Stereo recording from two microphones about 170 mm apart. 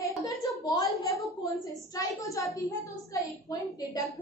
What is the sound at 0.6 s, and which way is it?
A woman's voice, 20° left (ahead or behind).